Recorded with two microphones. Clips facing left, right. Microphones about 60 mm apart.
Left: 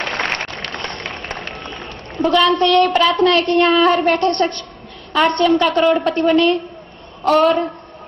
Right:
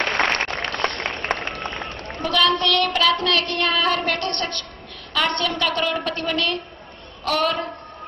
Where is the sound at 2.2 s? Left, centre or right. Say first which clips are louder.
Left 6 dB; centre.